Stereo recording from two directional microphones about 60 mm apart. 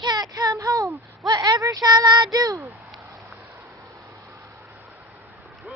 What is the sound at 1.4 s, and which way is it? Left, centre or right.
Speech, right.